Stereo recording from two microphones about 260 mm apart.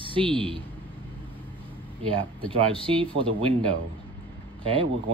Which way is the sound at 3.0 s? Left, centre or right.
Centre.